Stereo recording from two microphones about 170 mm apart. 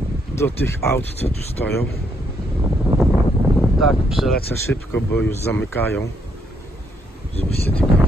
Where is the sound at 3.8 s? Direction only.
Centre (ahead or behind).